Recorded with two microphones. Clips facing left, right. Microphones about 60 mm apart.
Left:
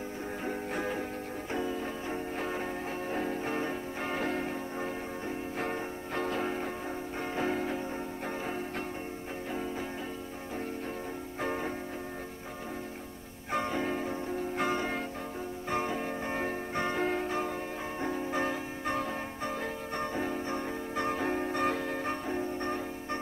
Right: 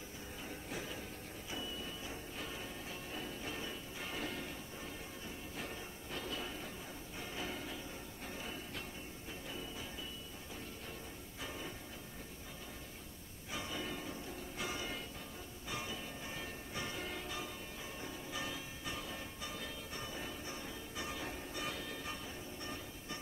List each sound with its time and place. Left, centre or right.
0.5 s music: left
11.4 s music: left
13.5 s music: left